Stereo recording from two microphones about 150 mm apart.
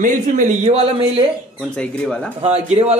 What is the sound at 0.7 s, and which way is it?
Speech, 40° right (ahead or behind).